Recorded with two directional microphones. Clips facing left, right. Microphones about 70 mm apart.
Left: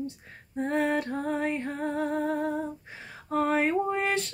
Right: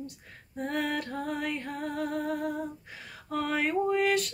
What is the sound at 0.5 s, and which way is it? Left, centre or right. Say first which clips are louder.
Music: left 5 dB; left.